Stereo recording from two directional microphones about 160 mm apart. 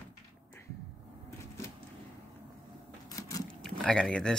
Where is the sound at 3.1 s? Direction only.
20° left (ahead or behind).